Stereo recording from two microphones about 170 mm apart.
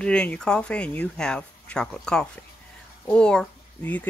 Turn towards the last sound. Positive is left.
turn(degrees=5)  # may be behind; listen again after turning